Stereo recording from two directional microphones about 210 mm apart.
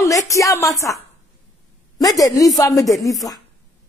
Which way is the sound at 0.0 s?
15° left (ahead or behind).